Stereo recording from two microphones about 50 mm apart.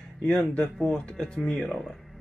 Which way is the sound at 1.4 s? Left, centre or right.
Centre.